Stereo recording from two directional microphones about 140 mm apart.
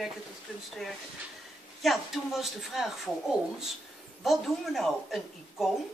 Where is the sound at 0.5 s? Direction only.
5° left (ahead or behind).